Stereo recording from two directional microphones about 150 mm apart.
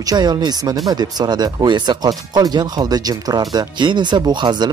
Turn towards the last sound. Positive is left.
turn(degrees=-30)  # may be behind; listen again after turning